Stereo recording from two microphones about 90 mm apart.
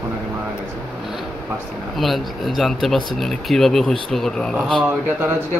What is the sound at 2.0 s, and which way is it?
Speech, centre (ahead or behind).